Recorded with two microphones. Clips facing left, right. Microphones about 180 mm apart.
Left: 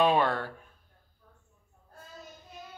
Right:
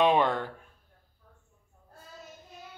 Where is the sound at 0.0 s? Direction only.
20° right (ahead or behind).